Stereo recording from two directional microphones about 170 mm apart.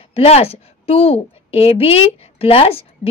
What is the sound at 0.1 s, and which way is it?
A woman's voice, 35° left (ahead or behind).